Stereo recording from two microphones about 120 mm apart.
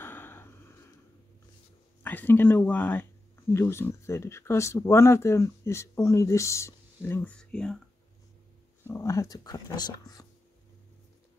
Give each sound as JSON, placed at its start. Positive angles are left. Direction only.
{"t": 0.0, "sound": "a sound", "side_deg": 20}
{"t": 2.0, "sound": "speech", "side_deg": 15}
{"t": 7.3, "sound": "speech", "side_deg": 5}
{"t": 8.8, "sound": "speech", "side_deg": 25}